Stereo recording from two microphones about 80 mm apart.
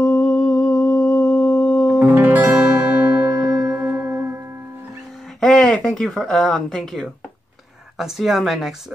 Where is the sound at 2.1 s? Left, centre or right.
Right.